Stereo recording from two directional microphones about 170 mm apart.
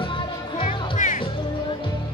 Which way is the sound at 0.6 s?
40° left (ahead or behind).